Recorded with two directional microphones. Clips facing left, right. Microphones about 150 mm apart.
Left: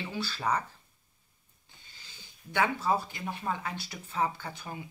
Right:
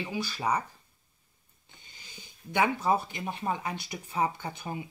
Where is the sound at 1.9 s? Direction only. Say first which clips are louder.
Right 4 dB; 15° right (ahead or behind).